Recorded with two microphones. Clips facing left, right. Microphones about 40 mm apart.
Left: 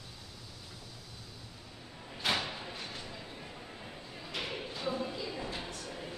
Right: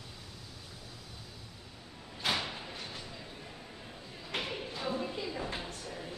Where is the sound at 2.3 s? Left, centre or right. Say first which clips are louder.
Left 1 dB; centre.